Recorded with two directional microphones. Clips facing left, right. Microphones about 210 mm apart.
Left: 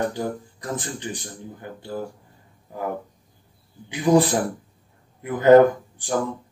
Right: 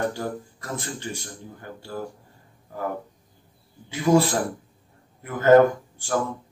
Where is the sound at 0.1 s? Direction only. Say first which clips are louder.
Left 2 dB; 15° left (ahead or behind).